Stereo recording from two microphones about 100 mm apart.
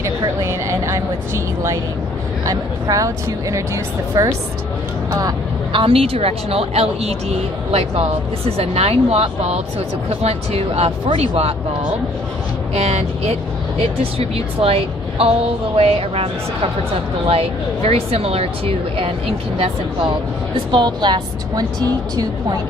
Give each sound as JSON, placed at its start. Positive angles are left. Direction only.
{"t": 0.2, "sound": "a sound", "side_deg": -30}
{"t": 2.4, "sound": "speech", "side_deg": -35}
{"t": 5.7, "sound": "speech", "side_deg": -60}
{"t": 8.5, "sound": "speech", "side_deg": -90}
{"t": 12.7, "sound": "speech", "side_deg": -90}
{"t": 17.3, "sound": "speech", "side_deg": -80}
{"t": 20.7, "sound": "a woman's voice", "side_deg": -45}